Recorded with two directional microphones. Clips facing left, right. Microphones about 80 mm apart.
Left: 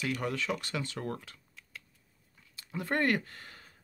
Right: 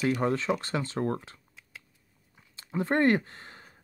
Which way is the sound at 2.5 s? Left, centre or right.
Right.